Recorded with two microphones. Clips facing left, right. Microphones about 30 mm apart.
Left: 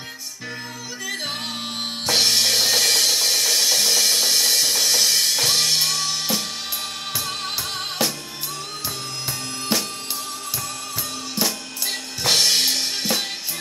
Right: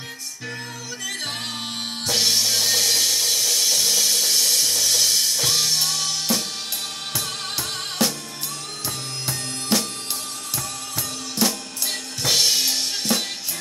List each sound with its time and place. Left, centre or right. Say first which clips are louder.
2.0 s drum kit: left 2 dB; left
5.4 s music: left 2 dB; left
7.2 s music: left 1 dB; centre
9.7 s music: right 1 dB; centre
11.3 s music: right 2 dB; centre
12.3 s drum kit: left 2 dB; left